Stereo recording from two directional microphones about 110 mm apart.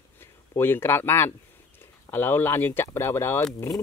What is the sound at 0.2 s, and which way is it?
Speech, 20° left (ahead or behind).